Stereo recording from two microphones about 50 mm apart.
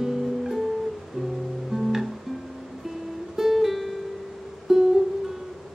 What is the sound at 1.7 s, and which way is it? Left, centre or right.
Music, centre.